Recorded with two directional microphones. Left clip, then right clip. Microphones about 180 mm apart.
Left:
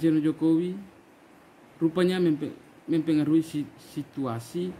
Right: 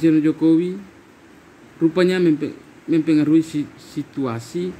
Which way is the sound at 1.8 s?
15° left (ahead or behind).